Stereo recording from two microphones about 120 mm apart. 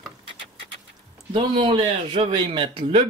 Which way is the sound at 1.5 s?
50° right (ahead or behind).